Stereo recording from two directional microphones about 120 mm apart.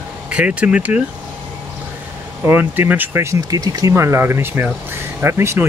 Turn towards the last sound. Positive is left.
turn(degrees=-20)  # may be behind; listen again after turning